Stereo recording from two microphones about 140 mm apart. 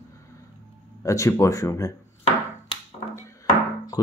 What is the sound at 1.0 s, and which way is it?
Speech, 20° left (ahead or behind).